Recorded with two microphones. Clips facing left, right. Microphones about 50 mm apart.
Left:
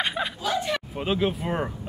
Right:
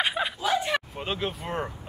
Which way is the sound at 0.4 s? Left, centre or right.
Centre.